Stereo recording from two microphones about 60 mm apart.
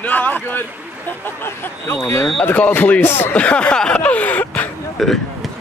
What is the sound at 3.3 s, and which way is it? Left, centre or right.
Speech, centre.